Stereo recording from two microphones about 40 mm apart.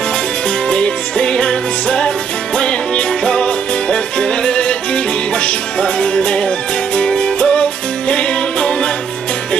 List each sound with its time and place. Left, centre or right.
0.7 s music: left